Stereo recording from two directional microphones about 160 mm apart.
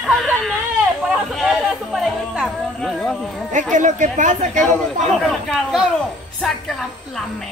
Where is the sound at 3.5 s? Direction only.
50° right (ahead or behind).